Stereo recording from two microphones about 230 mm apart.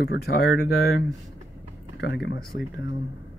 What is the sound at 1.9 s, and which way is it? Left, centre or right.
Speech, left.